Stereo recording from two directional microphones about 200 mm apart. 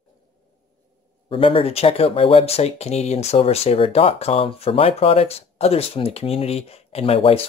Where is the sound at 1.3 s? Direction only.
25° left (ahead or behind).